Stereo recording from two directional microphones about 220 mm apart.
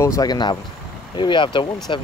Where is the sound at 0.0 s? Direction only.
15° left (ahead or behind).